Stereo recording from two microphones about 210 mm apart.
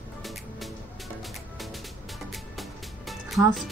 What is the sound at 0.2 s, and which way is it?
Music, centre (ahead or behind).